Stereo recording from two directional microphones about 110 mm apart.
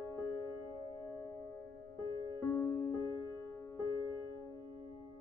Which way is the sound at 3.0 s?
30° left (ahead or behind).